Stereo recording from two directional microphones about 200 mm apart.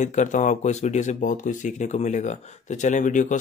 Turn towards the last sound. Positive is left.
turn(degrees=40)  # may be behind; listen again after turning